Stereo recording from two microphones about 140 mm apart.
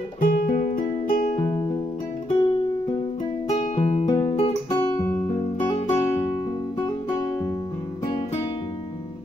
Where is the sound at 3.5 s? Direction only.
50° left (ahead or behind).